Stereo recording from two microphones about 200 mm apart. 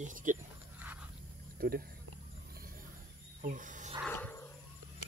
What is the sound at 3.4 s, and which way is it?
Wild animals, 40° right (ahead or behind).